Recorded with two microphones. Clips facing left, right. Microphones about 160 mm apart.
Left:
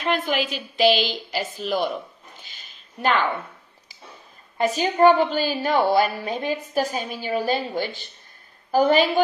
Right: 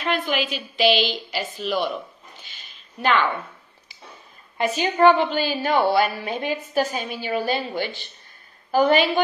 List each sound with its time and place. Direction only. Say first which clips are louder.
0.3 s a woman's voice: even; 45° left (ahead or behind)
2.5 s a sound: even; 40° left (ahead or behind)
4.6 s a woman's voice: left 1 dB; 35° left (ahead or behind)